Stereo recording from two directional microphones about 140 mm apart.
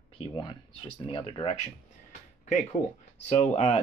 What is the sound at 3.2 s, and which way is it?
Speech, 55° left (ahead or behind).